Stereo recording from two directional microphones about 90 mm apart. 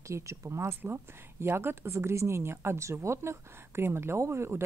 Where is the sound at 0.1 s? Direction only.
35° right (ahead or behind).